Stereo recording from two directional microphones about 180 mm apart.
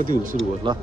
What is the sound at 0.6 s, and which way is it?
Speech, 25° right (ahead or behind).